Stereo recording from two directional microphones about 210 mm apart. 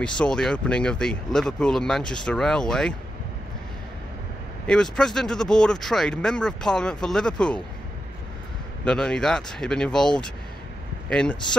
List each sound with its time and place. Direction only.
0.0 s speech: 5° left (ahead or behind)
4.6 s speech: 5° left (ahead or behind)
8.8 s speech: 5° left (ahead or behind)